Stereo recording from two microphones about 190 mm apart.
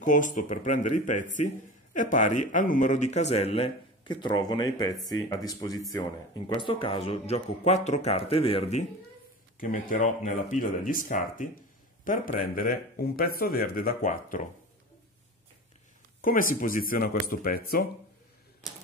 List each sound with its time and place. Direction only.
0.0 s a man's voice: 45° left (ahead or behind)
9.6 s speech: 45° left (ahead or behind)
16.2 s speech: 45° left (ahead or behind)